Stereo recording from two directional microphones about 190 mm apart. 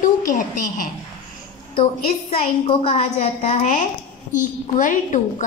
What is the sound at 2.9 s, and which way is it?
A woman's voice, 35° left (ahead or behind).